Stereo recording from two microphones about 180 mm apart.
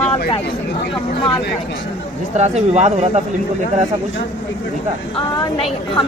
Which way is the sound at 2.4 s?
40° right (ahead or behind).